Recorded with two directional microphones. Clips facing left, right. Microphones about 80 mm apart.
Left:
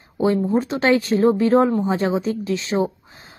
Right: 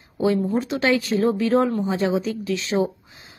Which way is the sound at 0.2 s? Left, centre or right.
Left.